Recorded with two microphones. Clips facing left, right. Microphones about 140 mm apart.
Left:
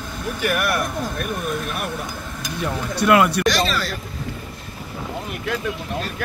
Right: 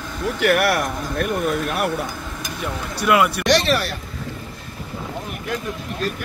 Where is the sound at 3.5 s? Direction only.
70° right (ahead or behind).